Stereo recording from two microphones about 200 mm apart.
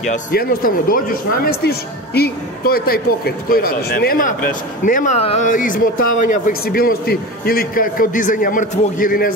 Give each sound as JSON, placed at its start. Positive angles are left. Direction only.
{"t": 0.0, "sound": "speech", "side_deg": 45}